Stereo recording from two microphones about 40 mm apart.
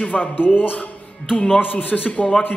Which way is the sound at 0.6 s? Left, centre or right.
Left.